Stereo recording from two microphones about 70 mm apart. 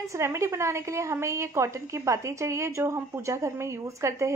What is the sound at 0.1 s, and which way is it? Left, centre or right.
A woman's voice, right.